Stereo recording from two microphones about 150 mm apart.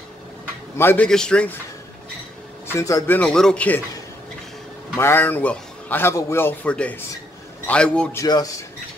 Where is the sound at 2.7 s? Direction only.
20° left (ahead or behind).